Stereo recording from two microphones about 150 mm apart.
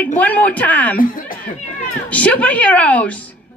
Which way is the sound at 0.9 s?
65° left (ahead or behind).